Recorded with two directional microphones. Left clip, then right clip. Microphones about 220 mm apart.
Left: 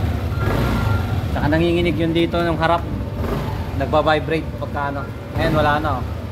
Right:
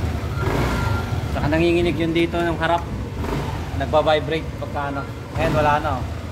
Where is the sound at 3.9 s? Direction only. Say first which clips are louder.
Left 1 dB; 35° left (ahead or behind).